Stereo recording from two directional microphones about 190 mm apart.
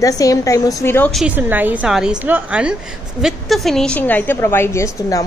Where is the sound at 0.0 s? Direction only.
15° left (ahead or behind).